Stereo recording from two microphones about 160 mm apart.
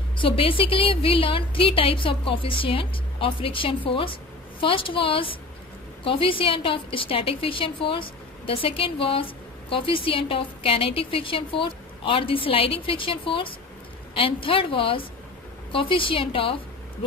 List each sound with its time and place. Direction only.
0.2 s a woman's voice: 35° left (ahead or behind)